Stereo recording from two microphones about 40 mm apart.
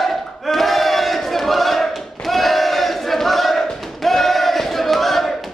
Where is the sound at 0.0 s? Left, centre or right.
Centre.